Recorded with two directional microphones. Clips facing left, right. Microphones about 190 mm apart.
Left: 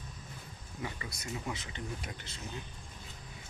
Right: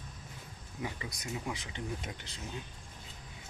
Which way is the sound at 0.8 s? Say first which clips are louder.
Right 1 dB; 15° right (ahead or behind).